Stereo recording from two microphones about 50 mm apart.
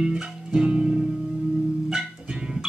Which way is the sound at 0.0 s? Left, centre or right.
Centre.